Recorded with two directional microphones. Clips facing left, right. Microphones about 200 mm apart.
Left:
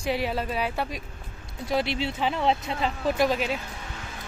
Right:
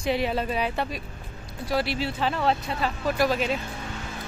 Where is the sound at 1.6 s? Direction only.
20° left (ahead or behind).